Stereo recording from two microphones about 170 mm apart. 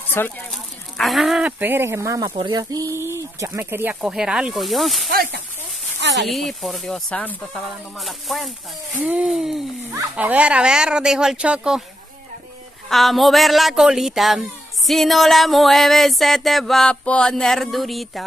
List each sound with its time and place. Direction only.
0.2 s speech: 15° left (ahead or behind)
0.5 s speech: centre (ahead or behind)
5.1 s speech: 60° right (ahead or behind)
5.9 s a sound: 90° right
6.2 s speech: centre (ahead or behind)
12.9 s speech: centre (ahead or behind)